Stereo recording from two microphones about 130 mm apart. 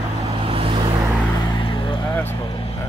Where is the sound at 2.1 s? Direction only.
15° left (ahead or behind).